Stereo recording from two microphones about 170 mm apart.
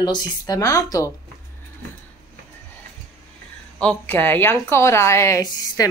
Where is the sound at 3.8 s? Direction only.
10° left (ahead or behind).